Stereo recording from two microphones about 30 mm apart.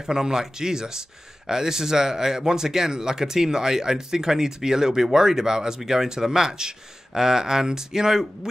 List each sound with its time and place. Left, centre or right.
0.0 s speech: centre